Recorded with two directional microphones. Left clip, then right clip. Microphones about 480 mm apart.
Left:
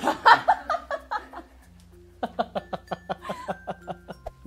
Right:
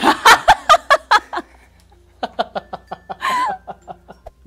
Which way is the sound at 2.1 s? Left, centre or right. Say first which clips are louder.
Right 6 dB; centre.